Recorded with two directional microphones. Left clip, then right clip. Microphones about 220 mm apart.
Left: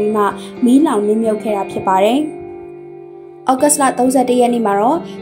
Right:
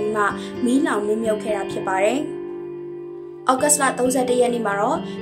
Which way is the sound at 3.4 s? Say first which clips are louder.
Left 5 dB; 20° left (ahead or behind).